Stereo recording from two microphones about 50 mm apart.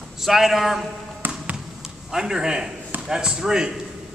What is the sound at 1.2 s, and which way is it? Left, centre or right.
Basketball bounce, right.